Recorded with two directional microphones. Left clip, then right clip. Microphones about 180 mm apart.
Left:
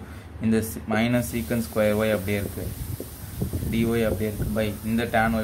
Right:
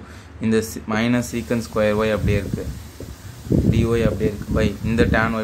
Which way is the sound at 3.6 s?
20° right (ahead or behind).